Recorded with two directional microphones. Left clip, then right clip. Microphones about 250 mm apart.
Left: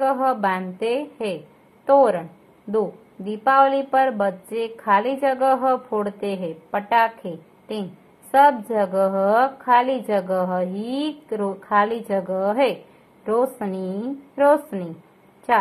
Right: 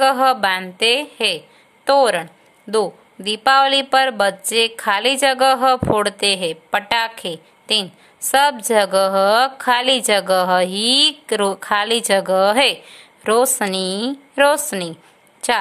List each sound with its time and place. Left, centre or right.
0.0 s a woman's voice: right
3.3 s a woman's voice: right
8.8 s a woman's voice: right
13.2 s a woman's voice: right
13.7 s a woman's voice: right